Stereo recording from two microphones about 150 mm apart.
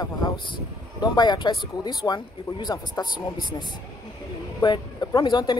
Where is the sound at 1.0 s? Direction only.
30° left (ahead or behind).